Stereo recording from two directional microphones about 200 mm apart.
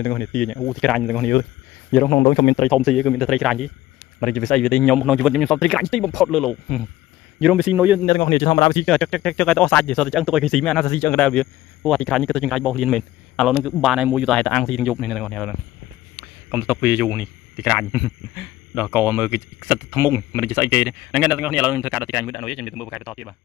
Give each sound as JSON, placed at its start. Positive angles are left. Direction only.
{"t": 0.0, "sound": "a man's voice", "side_deg": 10}
{"t": 2.2, "sound": "a man's voice", "side_deg": 25}
{"t": 2.6, "sound": "speech", "side_deg": 0}
{"t": 8.0, "sound": "a man's voice", "side_deg": 15}
{"t": 8.8, "sound": "speech", "side_deg": 0}
{"t": 16.5, "sound": "a man's voice", "side_deg": -10}